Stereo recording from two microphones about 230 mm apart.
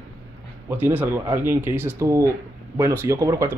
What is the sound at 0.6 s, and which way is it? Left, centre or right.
Speech, centre.